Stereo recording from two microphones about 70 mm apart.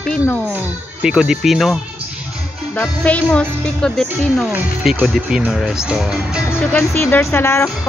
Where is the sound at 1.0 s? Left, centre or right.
Centre.